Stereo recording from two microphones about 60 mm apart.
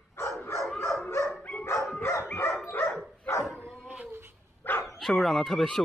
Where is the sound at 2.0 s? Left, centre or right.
Left.